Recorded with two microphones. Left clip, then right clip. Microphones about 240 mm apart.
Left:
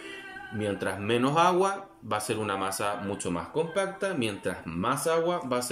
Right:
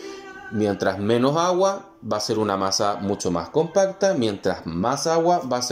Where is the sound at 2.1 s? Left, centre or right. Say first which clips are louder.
Right 7 dB; centre.